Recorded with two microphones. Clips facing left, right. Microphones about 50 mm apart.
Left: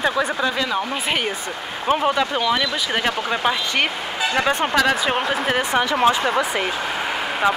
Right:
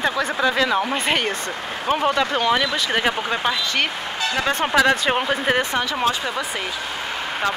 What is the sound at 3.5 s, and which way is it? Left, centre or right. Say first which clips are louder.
Speech: left 1 dB; centre.